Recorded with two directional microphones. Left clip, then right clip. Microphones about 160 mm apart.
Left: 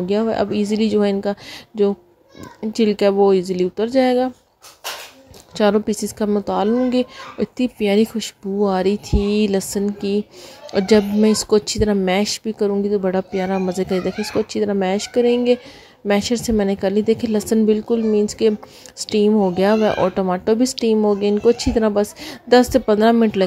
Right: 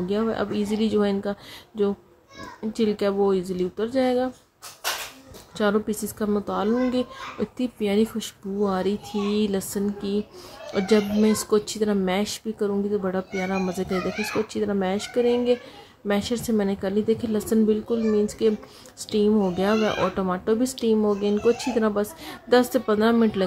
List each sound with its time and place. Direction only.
0.1 s speech: 35° left (ahead or behind)
5.6 s speech: 40° left (ahead or behind)